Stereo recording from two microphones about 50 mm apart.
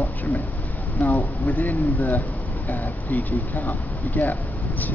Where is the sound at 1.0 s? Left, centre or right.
Left.